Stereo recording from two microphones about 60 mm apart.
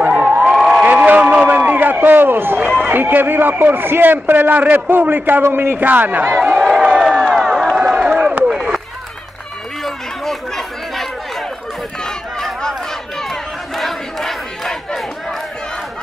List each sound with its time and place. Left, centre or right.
0.1 s crowd: centre
0.8 s a sound: right
2.8 s a man's voice: right
6.9 s crowd: centre
7.3 s a sound: centre
8.5 s run: centre
9.8 s chatter: centre
12.0 s a sound: centre
13.3 s crowd: centre